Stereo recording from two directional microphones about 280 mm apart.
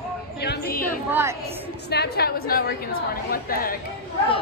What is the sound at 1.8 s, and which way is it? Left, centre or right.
A woman's voice, left.